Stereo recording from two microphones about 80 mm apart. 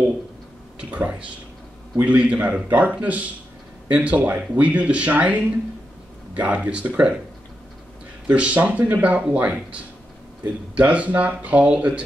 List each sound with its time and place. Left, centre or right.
0.7 s speech: centre
8.3 s speech: centre